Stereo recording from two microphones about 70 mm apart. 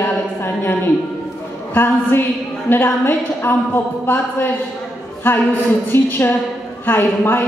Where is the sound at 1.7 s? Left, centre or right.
Left.